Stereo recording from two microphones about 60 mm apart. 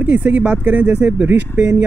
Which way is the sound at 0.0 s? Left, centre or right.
Right.